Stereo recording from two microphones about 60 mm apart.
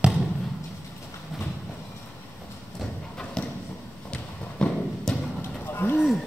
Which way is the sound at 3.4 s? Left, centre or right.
Centre.